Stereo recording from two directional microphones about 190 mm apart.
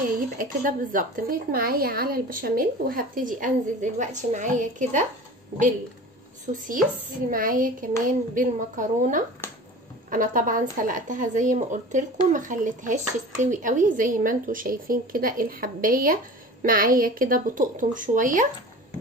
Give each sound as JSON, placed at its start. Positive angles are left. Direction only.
{"t": 0.4, "sound": "speech", "side_deg": -45}
{"t": 7.2, "sound": "speech", "side_deg": -45}
{"t": 9.4, "sound": "a sound", "side_deg": 10}
{"t": 10.0, "sound": "speech", "side_deg": -45}